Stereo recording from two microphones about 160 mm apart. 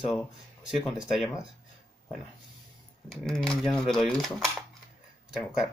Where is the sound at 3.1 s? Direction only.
5° left (ahead or behind).